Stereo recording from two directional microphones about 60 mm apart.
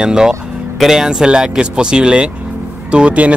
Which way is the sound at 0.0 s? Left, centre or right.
Centre.